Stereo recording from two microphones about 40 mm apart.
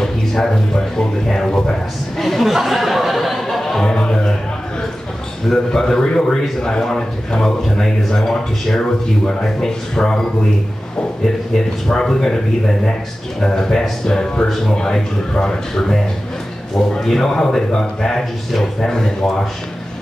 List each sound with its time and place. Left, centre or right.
0.0 s speech: centre
2.5 s a sound: centre
3.8 s music: centre
5.7 s speech: centre
11.5 s speech: centre
16.7 s speech: centre